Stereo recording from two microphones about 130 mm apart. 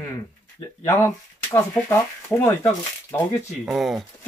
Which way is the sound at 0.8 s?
20° left (ahead or behind).